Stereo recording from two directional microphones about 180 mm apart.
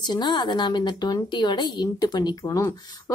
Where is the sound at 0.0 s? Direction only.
25° left (ahead or behind).